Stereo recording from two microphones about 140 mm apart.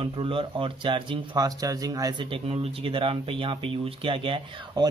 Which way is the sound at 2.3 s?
40° right (ahead or behind).